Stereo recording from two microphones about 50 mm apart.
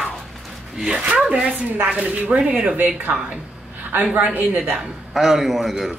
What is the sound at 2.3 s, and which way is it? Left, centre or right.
Speech, right.